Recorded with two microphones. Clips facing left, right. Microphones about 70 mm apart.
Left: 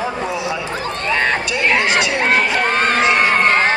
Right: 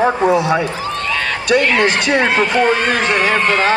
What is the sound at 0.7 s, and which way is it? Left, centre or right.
Speech, left.